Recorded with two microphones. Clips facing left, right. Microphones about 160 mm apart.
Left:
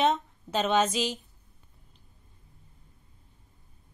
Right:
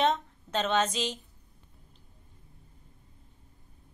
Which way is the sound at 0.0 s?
10° left (ahead or behind).